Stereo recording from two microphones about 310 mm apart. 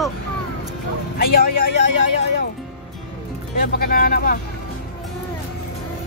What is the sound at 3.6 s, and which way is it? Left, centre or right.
Speech, left.